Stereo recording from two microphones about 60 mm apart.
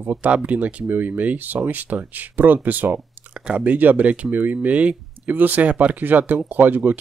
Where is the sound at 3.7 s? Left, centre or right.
Right.